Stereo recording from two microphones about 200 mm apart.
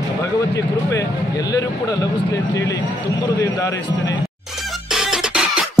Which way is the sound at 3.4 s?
15° left (ahead or behind).